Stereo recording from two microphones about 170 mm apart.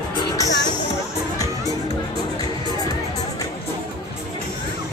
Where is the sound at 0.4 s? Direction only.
20° left (ahead or behind).